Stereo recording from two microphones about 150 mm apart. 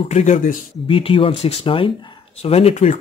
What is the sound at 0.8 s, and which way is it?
Speech, 35° left (ahead or behind).